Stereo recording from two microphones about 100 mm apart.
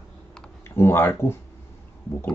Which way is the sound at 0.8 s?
25° left (ahead or behind).